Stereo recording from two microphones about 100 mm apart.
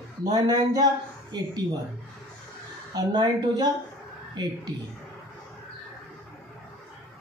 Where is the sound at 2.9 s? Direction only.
45° right (ahead or behind).